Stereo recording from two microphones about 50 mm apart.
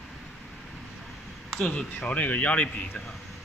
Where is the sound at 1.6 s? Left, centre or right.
Left.